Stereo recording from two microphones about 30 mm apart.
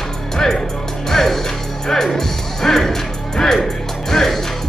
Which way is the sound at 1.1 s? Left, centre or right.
Centre.